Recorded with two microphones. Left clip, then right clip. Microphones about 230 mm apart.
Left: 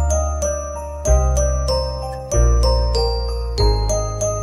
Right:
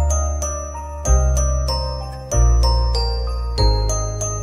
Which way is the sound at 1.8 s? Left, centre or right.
Centre.